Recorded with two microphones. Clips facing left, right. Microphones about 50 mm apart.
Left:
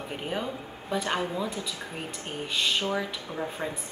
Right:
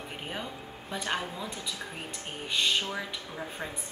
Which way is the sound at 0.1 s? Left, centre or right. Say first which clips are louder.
Left 7 dB; centre.